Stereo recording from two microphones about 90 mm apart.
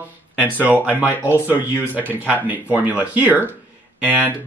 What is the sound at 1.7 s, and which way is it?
Speech, 20° left (ahead or behind).